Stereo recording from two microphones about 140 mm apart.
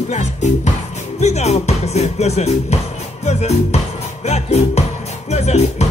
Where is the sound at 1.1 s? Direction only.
55° left (ahead or behind).